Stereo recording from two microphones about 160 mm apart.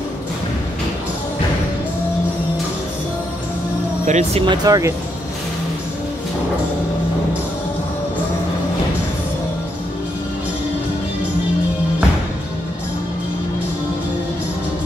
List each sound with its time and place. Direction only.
4.0 s speech: 45° right (ahead or behind)
4.6 s speech: 20° right (ahead or behind)